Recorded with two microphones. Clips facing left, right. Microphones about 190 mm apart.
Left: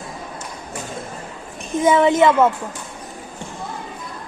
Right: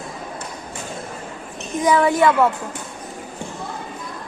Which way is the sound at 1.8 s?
25° left (ahead or behind).